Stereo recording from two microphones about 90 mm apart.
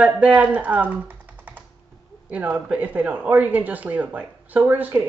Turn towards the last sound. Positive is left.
turn(degrees=-20)  # may be behind; listen again after turning